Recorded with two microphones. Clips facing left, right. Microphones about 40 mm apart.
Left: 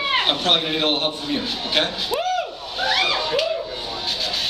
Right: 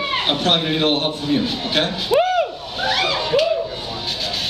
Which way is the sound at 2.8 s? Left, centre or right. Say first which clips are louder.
Right 1 dB; centre.